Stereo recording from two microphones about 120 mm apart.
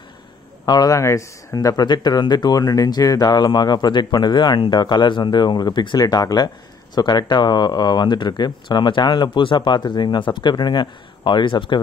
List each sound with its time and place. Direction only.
0.7 s speech: 30° left (ahead or behind)